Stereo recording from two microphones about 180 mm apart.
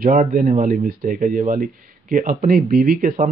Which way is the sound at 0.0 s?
50° right (ahead or behind).